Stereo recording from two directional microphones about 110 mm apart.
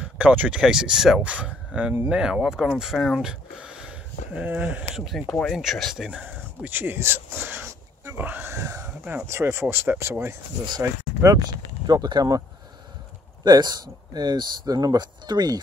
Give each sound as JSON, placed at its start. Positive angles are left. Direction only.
{"t": 0.0, "sound": "speech", "side_deg": -10}
{"t": 5.2, "sound": "speech", "side_deg": 15}
{"t": 5.5, "sound": "speech", "side_deg": 0}
{"t": 6.0, "sound": "speech", "side_deg": -15}
{"t": 11.3, "sound": "speech", "side_deg": -40}